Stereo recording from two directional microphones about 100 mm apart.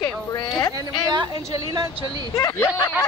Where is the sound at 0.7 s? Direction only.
45° right (ahead or behind).